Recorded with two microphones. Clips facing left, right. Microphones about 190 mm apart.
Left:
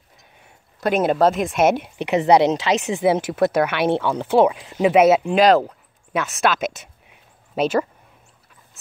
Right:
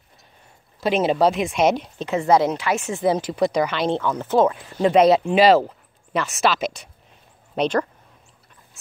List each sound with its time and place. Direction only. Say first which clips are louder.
0.7 s speech: left 1 dB; centre (ahead or behind)
2.0 s a woman's voice: left 3 dB; 15° left (ahead or behind); by 6.7 s centre (ahead or behind)
7.1 s a sound: even; 5° left (ahead or behind)